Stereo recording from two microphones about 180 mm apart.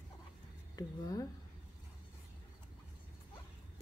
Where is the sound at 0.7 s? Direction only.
20° left (ahead or behind).